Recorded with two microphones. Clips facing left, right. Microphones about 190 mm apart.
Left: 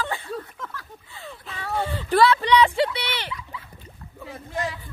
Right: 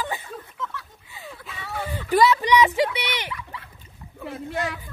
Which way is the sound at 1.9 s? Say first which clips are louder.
Even; 15° right (ahead or behind).